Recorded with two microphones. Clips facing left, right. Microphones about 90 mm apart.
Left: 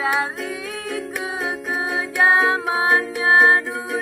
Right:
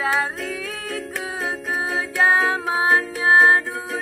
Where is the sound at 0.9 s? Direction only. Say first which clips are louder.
Left 2 dB; 10° left (ahead or behind).